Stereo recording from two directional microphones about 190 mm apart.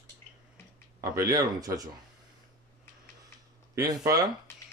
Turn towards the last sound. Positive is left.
turn(degrees=15)  # may be behind; listen again after turning